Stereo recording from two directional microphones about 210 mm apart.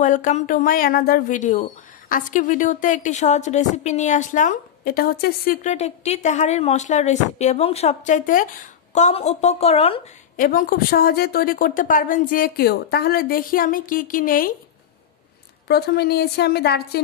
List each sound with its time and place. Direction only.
0.0 s speech: 35° left (ahead or behind)
10.3 s speech: 40° left (ahead or behind)
15.7 s a woman's voice: 50° left (ahead or behind)